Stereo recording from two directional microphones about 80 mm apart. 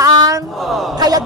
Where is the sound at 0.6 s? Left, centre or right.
Centre.